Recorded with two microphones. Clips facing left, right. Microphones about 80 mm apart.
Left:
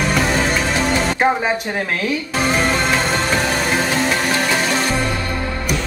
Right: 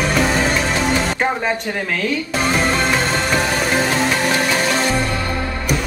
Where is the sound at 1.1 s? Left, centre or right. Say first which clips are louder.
Left 2 dB; centre.